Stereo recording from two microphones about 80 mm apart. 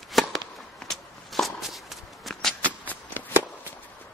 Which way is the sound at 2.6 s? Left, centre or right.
Left.